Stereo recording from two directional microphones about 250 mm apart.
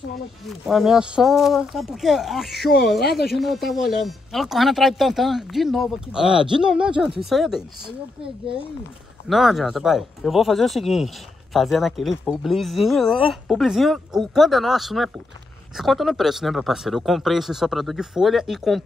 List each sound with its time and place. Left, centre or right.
0.5 s speech: centre
2.6 s speech: left
3.3 s speech: centre
9.3 s speech: centre